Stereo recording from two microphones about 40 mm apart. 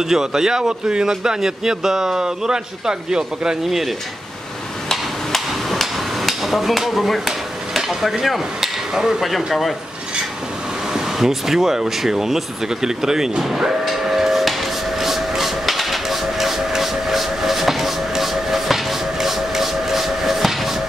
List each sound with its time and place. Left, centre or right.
0.0 s a man's voice: centre
5.5 s hammer: centre
10.9 s a man's voice: centre
13.4 s cattle: centre